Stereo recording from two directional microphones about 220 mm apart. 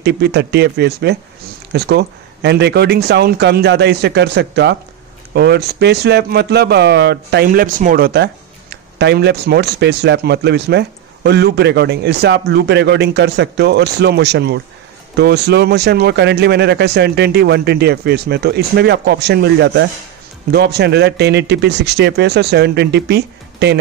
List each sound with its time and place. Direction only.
0.0 s speech: 50° right (ahead or behind)